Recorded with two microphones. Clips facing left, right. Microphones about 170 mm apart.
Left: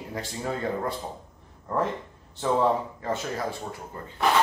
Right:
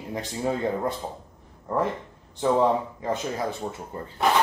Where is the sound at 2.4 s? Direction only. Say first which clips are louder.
Right 2 dB; 15° right (ahead or behind).